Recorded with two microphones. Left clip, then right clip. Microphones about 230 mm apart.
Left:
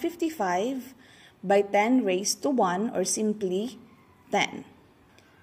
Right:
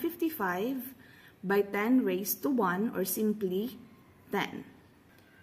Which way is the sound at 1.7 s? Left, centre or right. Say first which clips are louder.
Left 6 dB; centre.